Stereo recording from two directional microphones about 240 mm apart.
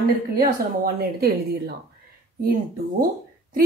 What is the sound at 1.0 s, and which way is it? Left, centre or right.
Speech, right.